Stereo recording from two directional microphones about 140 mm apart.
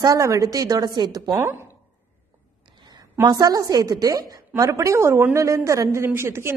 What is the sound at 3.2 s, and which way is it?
A woman's voice, 30° right (ahead or behind).